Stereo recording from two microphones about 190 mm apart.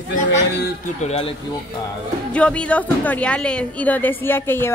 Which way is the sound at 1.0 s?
35° left (ahead or behind).